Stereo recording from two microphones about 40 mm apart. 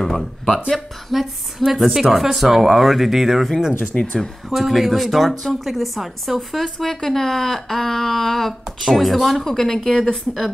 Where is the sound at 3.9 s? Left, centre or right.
Centre.